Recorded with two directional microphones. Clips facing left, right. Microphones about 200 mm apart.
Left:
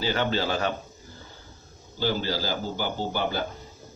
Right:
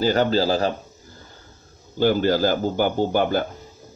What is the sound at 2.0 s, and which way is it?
Speech, 50° right (ahead or behind).